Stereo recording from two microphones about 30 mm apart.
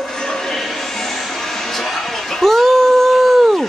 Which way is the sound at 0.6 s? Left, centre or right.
Centre.